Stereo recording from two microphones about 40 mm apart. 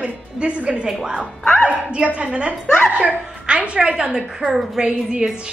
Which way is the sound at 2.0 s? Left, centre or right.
Right.